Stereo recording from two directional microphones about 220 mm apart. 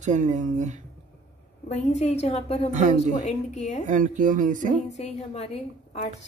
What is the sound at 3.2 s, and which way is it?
Speech, 30° left (ahead or behind).